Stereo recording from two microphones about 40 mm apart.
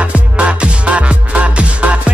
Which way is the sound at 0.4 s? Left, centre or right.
Right.